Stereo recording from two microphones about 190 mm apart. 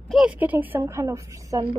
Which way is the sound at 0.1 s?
5° right (ahead or behind).